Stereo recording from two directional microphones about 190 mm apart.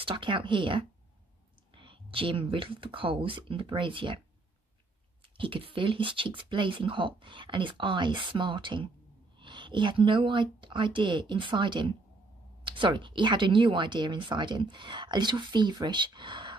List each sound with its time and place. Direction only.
0.0 s speech: 25° right (ahead or behind)
5.4 s speech: 30° right (ahead or behind)